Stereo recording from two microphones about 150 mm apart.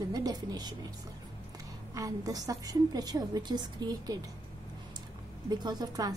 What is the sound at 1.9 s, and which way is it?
A woman's voice, 25° right (ahead or behind).